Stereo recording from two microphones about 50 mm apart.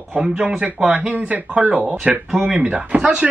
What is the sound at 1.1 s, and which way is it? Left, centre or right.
Speech, right.